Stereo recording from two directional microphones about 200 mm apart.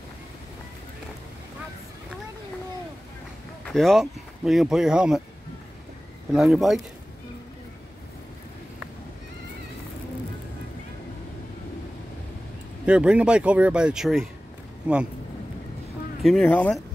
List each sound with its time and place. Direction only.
3.6 s speech: centre (ahead or behind)
6.3 s speech: centre (ahead or behind)
12.8 s speech: 5° right (ahead or behind)
16.2 s speech: centre (ahead or behind)